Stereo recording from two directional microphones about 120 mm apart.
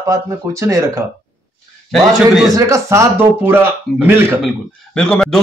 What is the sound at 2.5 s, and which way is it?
Speech, 25° right (ahead or behind).